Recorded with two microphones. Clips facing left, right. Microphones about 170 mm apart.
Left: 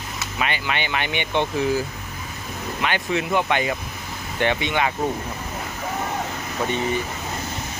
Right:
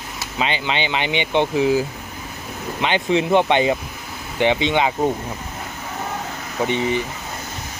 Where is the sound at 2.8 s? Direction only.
25° right (ahead or behind).